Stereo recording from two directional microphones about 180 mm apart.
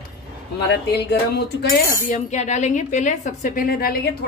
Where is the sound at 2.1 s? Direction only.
40° left (ahead or behind).